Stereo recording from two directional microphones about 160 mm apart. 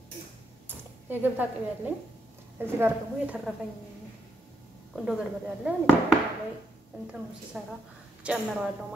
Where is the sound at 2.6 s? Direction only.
15° right (ahead or behind).